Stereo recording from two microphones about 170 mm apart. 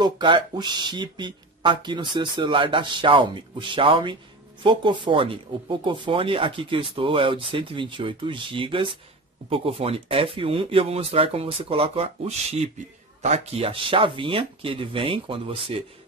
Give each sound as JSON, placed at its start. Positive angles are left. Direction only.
{"t": 0.0, "sound": "speech", "side_deg": -25}